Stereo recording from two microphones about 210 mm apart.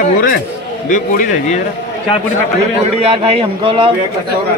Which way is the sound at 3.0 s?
25° right (ahead or behind).